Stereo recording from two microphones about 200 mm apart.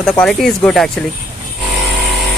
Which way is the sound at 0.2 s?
Centre (ahead or behind).